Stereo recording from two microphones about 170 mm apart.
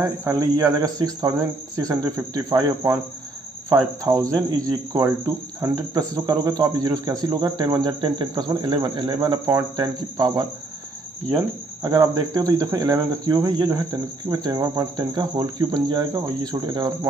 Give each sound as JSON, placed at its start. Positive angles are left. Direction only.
{"t": 0.0, "sound": "cricket", "side_deg": -20}